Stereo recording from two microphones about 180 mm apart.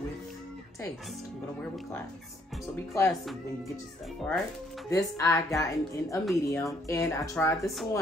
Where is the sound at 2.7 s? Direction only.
15° left (ahead or behind).